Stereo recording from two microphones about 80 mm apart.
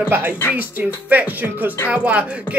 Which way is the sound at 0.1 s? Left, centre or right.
Right.